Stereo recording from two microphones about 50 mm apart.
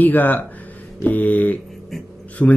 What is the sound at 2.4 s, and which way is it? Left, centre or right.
Speech, left.